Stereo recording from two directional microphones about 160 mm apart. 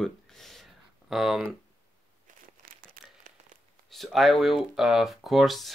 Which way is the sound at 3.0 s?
65° right (ahead or behind).